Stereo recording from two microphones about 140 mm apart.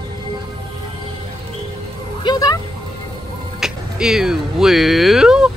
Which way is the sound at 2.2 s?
30° left (ahead or behind).